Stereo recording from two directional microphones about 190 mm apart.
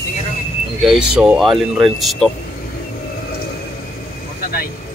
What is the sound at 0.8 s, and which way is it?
Speech, 5° right (ahead or behind).